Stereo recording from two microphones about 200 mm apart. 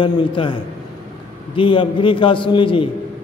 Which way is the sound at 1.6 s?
25° left (ahead or behind).